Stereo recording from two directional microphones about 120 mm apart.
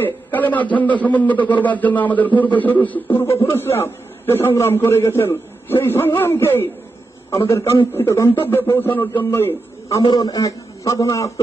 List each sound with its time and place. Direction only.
0.0 s a man's voice: 15° left (ahead or behind)
10.0 s a man's voice: 35° left (ahead or behind)